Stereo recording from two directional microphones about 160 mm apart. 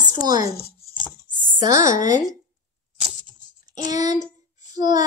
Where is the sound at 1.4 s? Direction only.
25° right (ahead or behind).